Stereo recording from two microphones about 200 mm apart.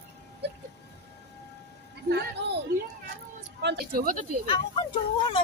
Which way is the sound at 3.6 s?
50° right (ahead or behind).